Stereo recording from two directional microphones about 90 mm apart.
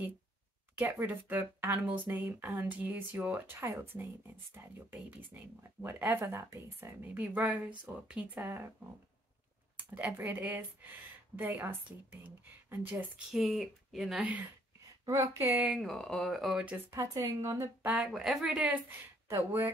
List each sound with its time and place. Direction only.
0.7 s speech: 25° right (ahead or behind)
5.6 s speech: 20° right (ahead or behind)
8.4 s a woman's voice: 30° right (ahead or behind)
9.8 s speech: 15° right (ahead or behind)
13.3 s speech: centre (ahead or behind)
15.0 s speech: 30° right (ahead or behind)
15.7 s speech: centre (ahead or behind)
17.2 s a woman's voice: 30° right (ahead or behind)
18.0 s speech: 5° right (ahead or behind)
18.9 s a woman's voice: 30° right (ahead or behind)